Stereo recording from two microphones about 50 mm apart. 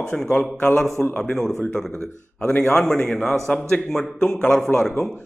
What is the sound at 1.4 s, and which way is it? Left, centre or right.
A man's voice, centre.